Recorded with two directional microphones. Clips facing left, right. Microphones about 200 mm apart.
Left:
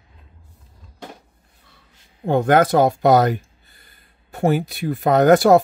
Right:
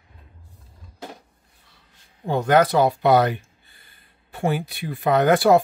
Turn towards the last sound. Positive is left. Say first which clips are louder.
# left 4 dB
turn(degrees=45)  # may be behind; listen again after turning